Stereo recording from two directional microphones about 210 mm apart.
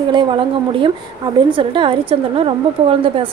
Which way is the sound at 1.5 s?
25° right (ahead or behind).